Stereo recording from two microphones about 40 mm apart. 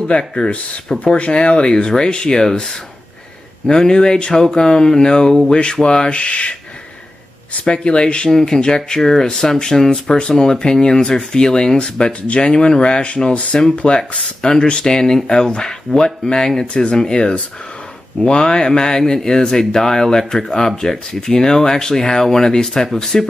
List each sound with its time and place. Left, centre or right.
0.2 s speech: left
0.9 s speech: left
7.6 s speech: left
8.3 s speech: centre